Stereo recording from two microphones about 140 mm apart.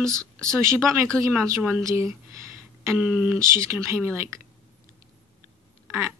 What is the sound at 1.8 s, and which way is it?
Speech, 20° right (ahead or behind).